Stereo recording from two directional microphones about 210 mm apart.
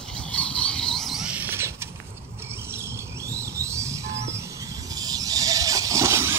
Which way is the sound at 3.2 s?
15° right (ahead or behind).